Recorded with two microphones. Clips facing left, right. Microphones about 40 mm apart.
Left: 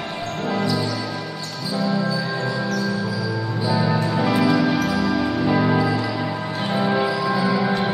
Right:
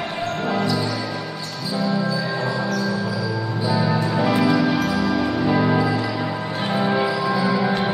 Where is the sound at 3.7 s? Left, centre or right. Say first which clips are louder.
Even; centre.